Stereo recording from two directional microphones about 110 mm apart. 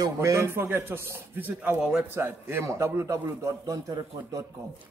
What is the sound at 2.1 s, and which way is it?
A man's voice, 20° right (ahead or behind).